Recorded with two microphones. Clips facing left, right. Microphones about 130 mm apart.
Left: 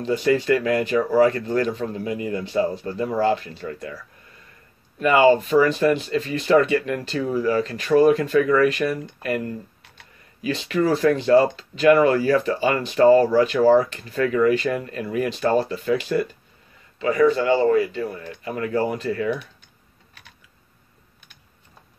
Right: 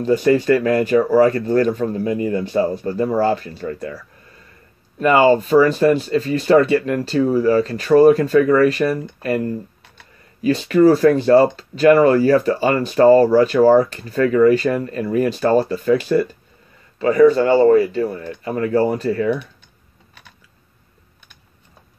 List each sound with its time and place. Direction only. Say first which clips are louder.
0.0 s speech: right 5 dB; 45° right (ahead or behind)